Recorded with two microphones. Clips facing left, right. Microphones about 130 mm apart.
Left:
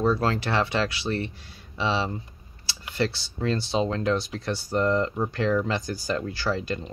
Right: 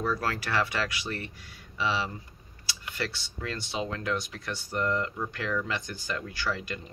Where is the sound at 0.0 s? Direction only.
25° left (ahead or behind).